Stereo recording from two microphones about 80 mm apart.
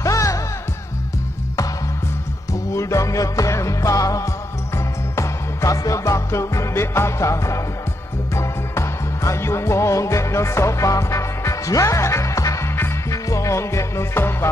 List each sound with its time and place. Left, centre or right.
0.0 s music: left
2.5 s music: left